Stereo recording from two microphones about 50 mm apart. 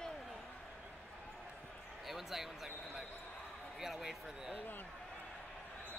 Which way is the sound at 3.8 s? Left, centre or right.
Centre.